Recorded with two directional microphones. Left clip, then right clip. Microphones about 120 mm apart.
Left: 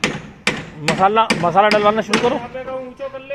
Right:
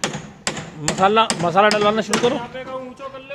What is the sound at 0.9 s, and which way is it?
Speech, 30° right (ahead or behind).